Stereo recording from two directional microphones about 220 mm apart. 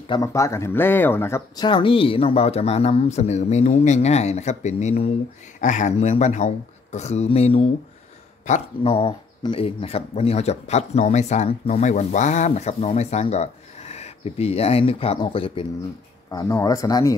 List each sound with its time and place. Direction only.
0.1 s speech: 15° left (ahead or behind)